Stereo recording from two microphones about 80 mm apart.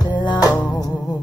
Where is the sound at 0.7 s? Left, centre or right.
Left.